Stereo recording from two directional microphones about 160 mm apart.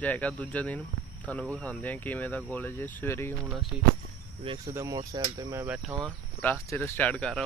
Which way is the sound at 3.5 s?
Centre (ahead or behind).